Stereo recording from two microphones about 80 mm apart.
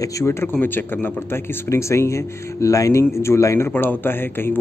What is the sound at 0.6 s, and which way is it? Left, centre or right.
Speech, left.